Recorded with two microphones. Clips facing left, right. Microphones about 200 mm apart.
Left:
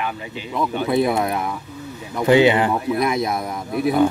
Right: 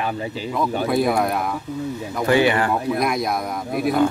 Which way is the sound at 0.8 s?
Centre (ahead or behind).